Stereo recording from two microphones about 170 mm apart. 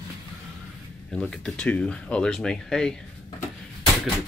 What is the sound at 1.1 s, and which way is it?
Speech, 5° left (ahead or behind).